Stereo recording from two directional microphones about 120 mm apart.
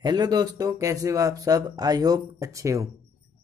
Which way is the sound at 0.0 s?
35° right (ahead or behind).